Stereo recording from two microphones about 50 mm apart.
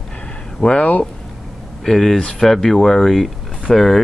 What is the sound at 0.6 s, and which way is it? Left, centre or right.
Speech, left.